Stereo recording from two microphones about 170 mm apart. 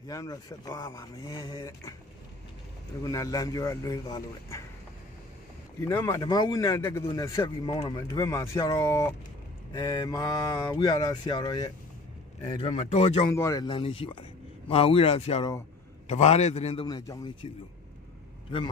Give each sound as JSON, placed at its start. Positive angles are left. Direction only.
{"t": 0.1, "sound": "speech", "side_deg": 20}
{"t": 3.0, "sound": "speech", "side_deg": 20}
{"t": 5.9, "sound": "speech", "side_deg": 15}
{"t": 12.4, "sound": "a man's voice", "side_deg": 35}
{"t": 13.3, "sound": "a man's voice", "side_deg": 20}
{"t": 16.8, "sound": "speech", "side_deg": 20}